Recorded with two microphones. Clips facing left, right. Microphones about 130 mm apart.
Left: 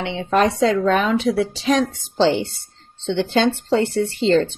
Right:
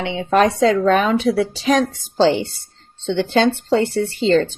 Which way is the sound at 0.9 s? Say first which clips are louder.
Right 2 dB; 45° right (ahead or behind).